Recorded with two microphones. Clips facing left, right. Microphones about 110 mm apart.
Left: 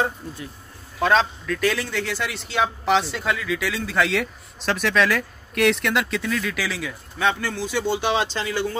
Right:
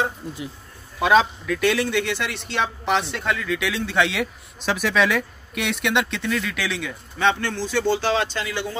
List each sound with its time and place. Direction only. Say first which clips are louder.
0.9 s a man's voice: right 2 dB; 5° right (ahead or behind); by 8.3 s 15° left (ahead or behind)
8.3 s speech: left 1 dB; 30° left (ahead or behind)